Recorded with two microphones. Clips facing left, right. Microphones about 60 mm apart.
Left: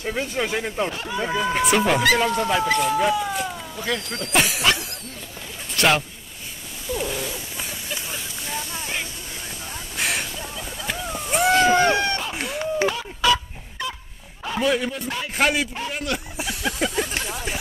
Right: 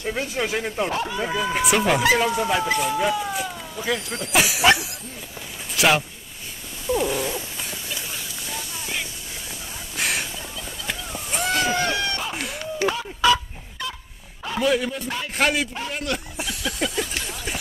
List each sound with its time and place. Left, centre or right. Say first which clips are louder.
0.0 s speech: even; centre
5.8 s speech: even; centre
7.0 s cat: right 3 dB; centre
9.9 s a sound: even; centre
11.7 s run: left 6 dB; left
12.2 s a sound: left 2 dB; centre
14.4 s speech: even; centre